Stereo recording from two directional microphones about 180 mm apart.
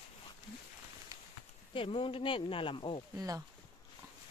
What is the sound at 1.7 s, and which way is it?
Speech, 30° left (ahead or behind).